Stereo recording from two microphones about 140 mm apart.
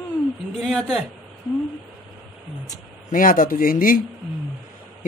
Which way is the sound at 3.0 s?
75° left (ahead or behind).